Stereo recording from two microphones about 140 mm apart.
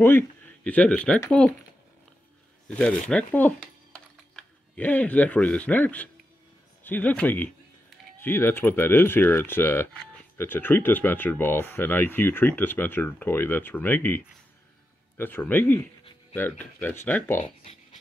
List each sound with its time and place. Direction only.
0.7 s speech: 10° left (ahead or behind)
2.8 s speech: 5° left (ahead or behind)